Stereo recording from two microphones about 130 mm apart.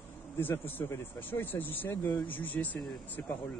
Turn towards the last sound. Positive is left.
turn(degrees=15)  # may be behind; listen again after turning